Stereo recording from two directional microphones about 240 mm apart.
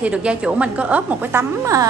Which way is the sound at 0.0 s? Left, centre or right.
Centre.